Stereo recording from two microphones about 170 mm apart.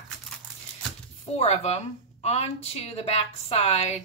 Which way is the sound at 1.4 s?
40° left (ahead or behind).